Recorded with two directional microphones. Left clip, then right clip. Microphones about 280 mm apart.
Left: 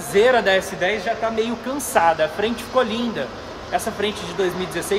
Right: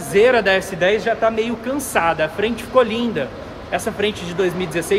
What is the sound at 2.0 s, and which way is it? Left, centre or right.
A man's voice, centre.